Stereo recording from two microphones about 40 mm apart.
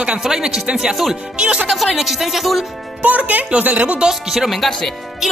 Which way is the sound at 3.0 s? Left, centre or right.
Right.